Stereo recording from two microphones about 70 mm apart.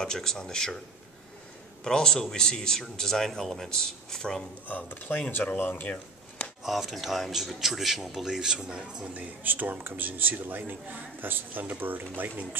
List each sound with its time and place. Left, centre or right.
0.0 s a man's voice: centre
1.9 s a man's voice: centre
4.6 s speech: left
6.6 s speech: centre; by 12.3 s right